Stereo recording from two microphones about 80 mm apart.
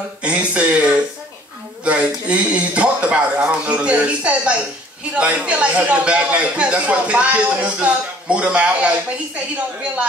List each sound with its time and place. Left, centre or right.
0.2 s speech: centre
1.9 s a man's voice: centre